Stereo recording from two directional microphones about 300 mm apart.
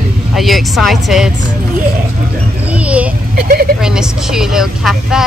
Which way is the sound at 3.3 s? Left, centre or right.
Right.